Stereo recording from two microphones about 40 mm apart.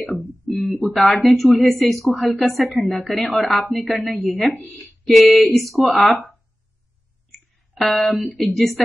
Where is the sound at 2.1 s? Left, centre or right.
Left.